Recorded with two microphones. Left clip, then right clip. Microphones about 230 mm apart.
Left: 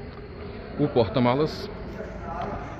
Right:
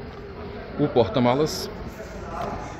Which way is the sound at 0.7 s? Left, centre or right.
Centre.